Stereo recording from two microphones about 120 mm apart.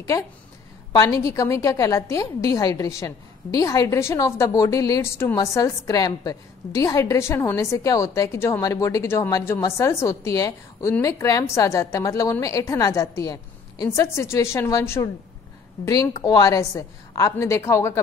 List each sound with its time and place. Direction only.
0.9 s a woman's voice: 30° left (ahead or behind)